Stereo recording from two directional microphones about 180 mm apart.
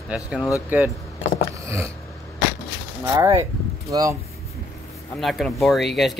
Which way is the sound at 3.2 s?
15° right (ahead or behind).